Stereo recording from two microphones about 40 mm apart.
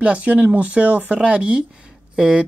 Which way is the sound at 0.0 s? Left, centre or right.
Right.